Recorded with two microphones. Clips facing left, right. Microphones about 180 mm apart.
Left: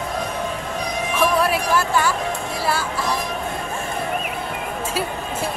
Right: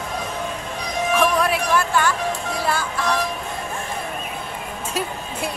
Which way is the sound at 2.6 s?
5° left (ahead or behind).